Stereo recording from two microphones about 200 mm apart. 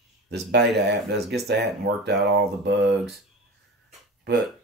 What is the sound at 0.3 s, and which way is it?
Speech, 55° right (ahead or behind).